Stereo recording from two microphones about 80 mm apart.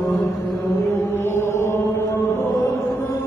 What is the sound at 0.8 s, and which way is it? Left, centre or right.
Chant, left.